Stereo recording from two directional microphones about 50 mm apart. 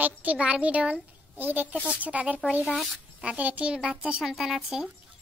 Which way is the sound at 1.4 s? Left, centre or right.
Right.